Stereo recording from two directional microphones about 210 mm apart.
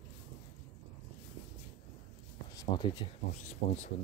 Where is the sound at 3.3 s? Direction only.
35° left (ahead or behind).